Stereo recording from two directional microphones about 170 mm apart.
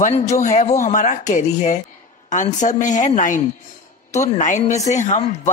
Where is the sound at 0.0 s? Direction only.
45° left (ahead or behind).